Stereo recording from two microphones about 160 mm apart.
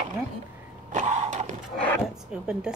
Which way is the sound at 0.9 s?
45° right (ahead or behind).